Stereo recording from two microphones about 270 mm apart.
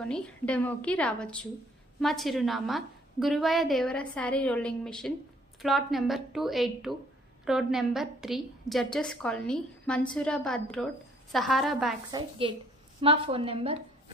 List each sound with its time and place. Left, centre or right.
0.0 s a woman's voice: centre
12.1 s a woman's voice: centre